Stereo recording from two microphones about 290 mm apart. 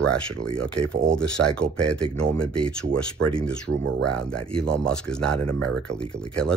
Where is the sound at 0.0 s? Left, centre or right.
Centre.